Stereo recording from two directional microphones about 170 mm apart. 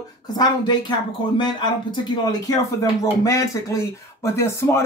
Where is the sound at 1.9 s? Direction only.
25° left (ahead or behind).